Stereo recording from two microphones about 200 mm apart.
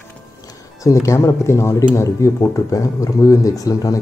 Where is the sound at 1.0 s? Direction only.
15° left (ahead or behind).